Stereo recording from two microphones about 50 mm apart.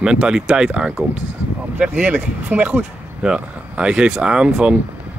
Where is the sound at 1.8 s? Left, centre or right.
Right.